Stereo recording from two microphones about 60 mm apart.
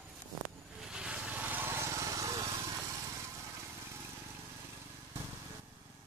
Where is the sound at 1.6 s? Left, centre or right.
Right.